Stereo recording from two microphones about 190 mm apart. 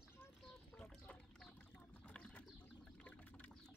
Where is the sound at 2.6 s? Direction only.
5° left (ahead or behind).